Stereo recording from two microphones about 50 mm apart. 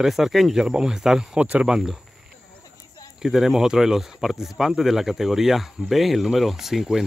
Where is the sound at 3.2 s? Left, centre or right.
Centre.